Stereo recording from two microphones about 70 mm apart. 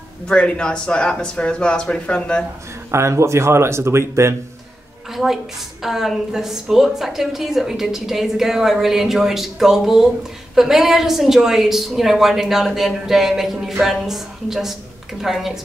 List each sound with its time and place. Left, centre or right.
0.3 s speech: centre
2.9 s speech: right
5.1 s a woman's voice: centre